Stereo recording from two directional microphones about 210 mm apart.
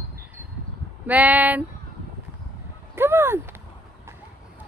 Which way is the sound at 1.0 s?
5° right (ahead or behind).